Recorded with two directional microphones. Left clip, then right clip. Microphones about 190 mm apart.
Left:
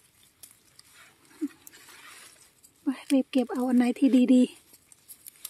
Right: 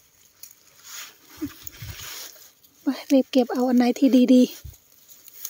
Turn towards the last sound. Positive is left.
turn(degrees=-20)  # may be behind; listen again after turning